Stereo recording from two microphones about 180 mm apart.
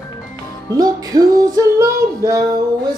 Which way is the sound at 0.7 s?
20° right (ahead or behind).